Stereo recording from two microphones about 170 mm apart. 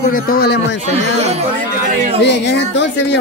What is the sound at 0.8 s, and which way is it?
Speech, 40° right (ahead or behind).